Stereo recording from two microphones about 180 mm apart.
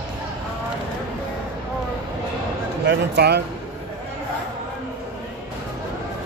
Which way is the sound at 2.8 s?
65° right (ahead or behind).